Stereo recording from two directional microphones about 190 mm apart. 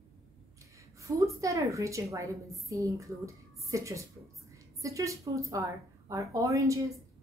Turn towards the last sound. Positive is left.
turn(degrees=-15)  # may be behind; listen again after turning